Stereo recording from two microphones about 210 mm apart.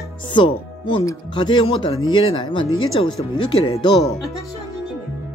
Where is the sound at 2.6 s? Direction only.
75° left (ahead or behind).